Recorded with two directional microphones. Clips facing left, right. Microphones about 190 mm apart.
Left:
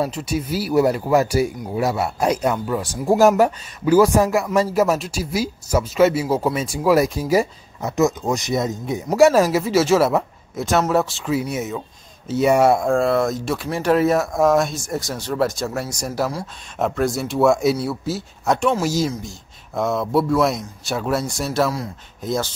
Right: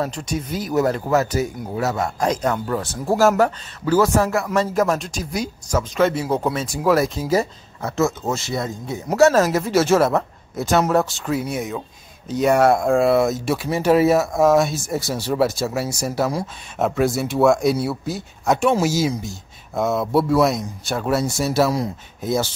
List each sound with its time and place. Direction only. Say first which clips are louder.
0.0 s speech: left 2 dB; 5° left (ahead or behind)